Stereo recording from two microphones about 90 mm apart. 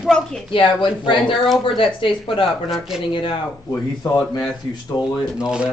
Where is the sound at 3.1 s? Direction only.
75° left (ahead or behind).